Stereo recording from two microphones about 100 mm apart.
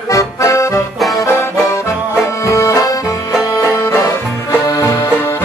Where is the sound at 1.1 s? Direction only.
30° left (ahead or behind).